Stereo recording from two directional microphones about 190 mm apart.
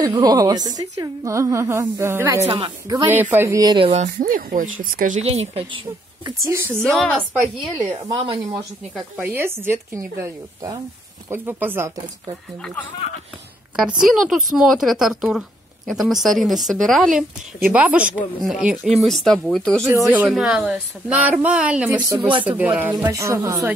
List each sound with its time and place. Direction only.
0.1 s a woman's voice: 20° right (ahead or behind)
2.5 s speech: 25° right (ahead or behind)
3.1 s a woman's voice: 10° right (ahead or behind); by 4.0 s 30° right (ahead or behind)
4.0 s speech: 45° right (ahead or behind)
6.2 s a woman's voice: 15° right (ahead or behind)
6.8 s speech: 5° left (ahead or behind)
7.8 s speech: 20° right (ahead or behind)
9.1 s a woman's voice: 10° right (ahead or behind)
13.7 s a woman's voice: 5° right (ahead or behind)